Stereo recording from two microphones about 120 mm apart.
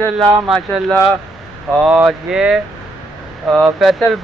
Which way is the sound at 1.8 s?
15° right (ahead or behind).